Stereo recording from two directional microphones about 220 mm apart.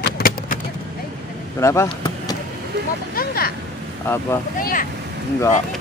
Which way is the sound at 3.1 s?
45° left (ahead or behind).